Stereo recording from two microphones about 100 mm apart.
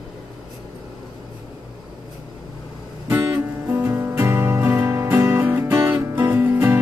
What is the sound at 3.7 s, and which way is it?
Music, 25° right (ahead or behind).